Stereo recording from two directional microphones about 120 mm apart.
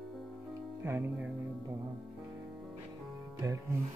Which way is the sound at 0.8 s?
20° right (ahead or behind).